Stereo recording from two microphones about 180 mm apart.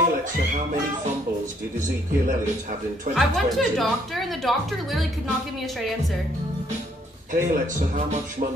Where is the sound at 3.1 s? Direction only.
Centre (ahead or behind).